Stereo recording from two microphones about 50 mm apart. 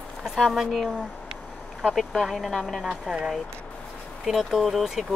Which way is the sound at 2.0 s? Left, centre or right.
Centre.